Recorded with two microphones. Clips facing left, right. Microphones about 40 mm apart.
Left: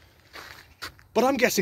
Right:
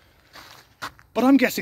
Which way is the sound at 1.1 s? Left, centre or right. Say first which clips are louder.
Right 4 dB; centre.